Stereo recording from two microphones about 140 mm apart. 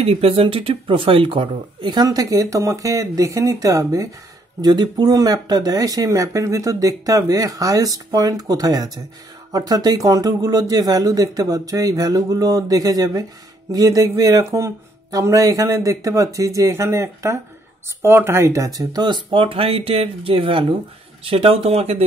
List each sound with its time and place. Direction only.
0.0 s speech: 45° right (ahead or behind)